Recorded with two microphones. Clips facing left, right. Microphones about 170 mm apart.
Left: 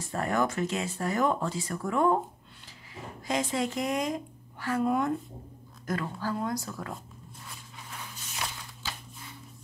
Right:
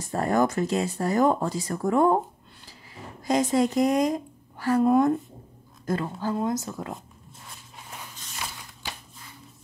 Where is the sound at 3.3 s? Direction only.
40° right (ahead or behind).